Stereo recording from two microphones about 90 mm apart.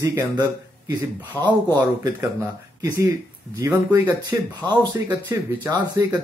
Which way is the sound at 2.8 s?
35° right (ahead or behind).